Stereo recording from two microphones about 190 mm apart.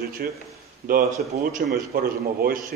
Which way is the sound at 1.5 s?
50° right (ahead or behind).